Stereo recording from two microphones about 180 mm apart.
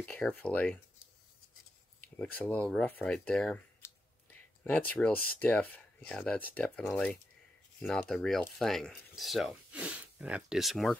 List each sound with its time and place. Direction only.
0.0 s speech: 5° left (ahead or behind)
2.1 s speech: 10° left (ahead or behind)
4.6 s speech: 5° left (ahead or behind)